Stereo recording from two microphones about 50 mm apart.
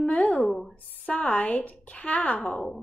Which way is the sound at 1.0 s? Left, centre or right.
Left.